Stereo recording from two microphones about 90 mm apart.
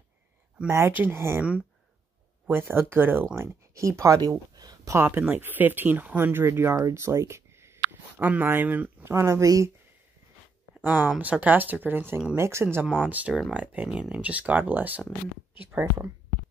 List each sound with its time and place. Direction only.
0.7 s speech: 30° right (ahead or behind)
2.4 s speech: 25° right (ahead or behind)
4.6 s a sound: 45° right (ahead or behind)
4.9 s speech: 25° right (ahead or behind)
9.1 s speech: 35° right (ahead or behind)
10.8 s speech: 20° right (ahead or behind)
13.0 s speech: 20° right (ahead or behind)